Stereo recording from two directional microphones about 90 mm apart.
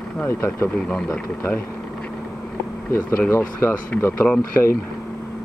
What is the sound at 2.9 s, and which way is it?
Speech, 30° left (ahead or behind).